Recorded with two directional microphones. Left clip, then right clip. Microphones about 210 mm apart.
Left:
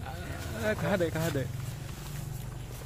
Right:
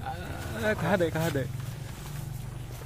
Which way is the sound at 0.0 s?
15° right (ahead or behind).